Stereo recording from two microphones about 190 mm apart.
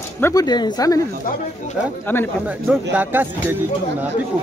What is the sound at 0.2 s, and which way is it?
Speech, 20° left (ahead or behind).